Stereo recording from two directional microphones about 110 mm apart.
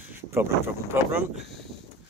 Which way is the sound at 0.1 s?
20° right (ahead or behind).